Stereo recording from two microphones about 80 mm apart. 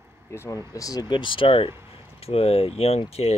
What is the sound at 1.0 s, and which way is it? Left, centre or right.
Speech, left.